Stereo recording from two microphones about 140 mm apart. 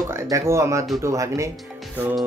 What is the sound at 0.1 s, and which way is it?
Speech, 20° right (ahead or behind).